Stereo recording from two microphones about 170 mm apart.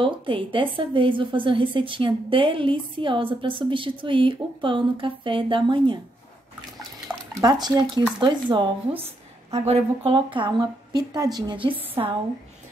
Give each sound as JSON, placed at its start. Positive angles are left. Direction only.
{"t": 0.0, "sound": "a woman's voice", "side_deg": -30}
{"t": 7.3, "sound": "a woman's voice", "side_deg": -25}